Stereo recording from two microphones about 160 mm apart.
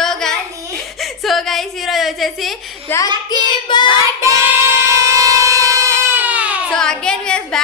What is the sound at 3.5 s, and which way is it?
Child singing, 30° left (ahead or behind).